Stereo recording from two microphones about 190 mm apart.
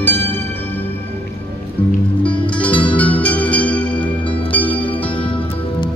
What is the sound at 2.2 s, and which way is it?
Music, 5° left (ahead or behind).